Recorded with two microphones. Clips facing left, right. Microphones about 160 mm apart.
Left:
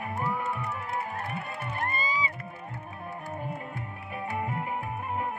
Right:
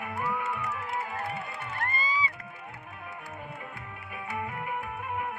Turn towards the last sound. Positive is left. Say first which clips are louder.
# left 3 dB
turn(degrees=35)  # may be behind; listen again after turning